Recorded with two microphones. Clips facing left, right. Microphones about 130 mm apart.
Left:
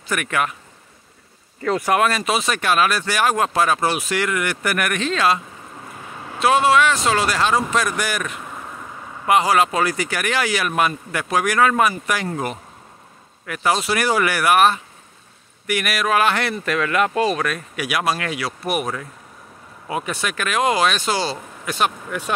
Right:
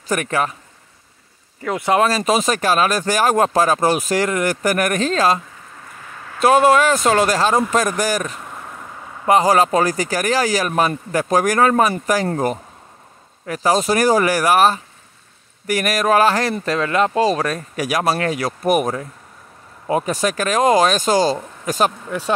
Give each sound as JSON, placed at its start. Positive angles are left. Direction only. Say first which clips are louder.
{"t": 0.1, "sound": "speech", "louder": "right 3 dB", "side_deg": -35}
{"t": 1.6, "sound": "speech", "louder": "right 1 dB", "side_deg": -20}
{"t": 6.1, "sound": "vehicle", "louder": "left 2 dB", "side_deg": 20}
{"t": 6.4, "sound": "speech", "louder": "right 3 dB", "side_deg": -45}
{"t": 8.4, "sound": "vehicle", "louder": "even", "side_deg": 0}
{"t": 9.3, "sound": "speech", "louder": "right 3 dB", "side_deg": -40}
{"t": 13.5, "sound": "speech", "louder": "right 4 dB", "side_deg": -35}